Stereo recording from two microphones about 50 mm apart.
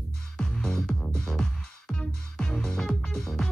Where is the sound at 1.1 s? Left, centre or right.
Centre.